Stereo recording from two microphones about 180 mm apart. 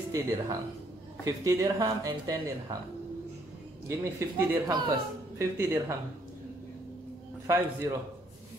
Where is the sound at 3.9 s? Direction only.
15° right (ahead or behind).